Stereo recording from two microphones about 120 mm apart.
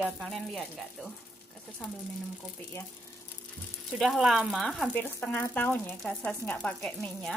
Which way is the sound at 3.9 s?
Centre (ahead or behind).